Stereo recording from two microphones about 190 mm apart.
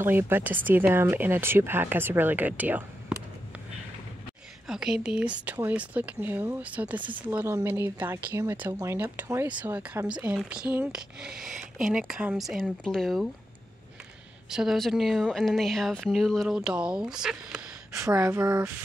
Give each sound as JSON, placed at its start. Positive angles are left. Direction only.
{"t": 0.0, "sound": "speech", "side_deg": -10}
{"t": 4.6, "sound": "speech", "side_deg": -5}
{"t": 7.0, "sound": "speech", "side_deg": -25}
{"t": 7.2, "sound": "speech", "side_deg": -15}
{"t": 14.5, "sound": "speech", "side_deg": 0}